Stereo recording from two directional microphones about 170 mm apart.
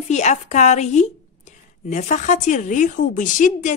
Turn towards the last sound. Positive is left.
turn(degrees=50)  # may be behind; listen again after turning